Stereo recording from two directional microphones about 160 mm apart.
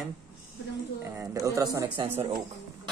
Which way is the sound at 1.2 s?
20° right (ahead or behind).